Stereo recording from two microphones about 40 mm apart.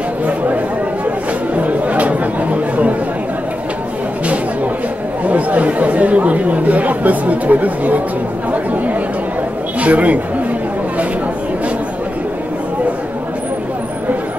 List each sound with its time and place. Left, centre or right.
1.5 s chatter: right
5.2 s speech: right
9.8 s speech: right